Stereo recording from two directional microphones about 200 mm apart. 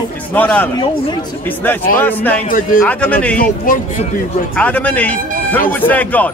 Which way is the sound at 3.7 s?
40° left (ahead or behind).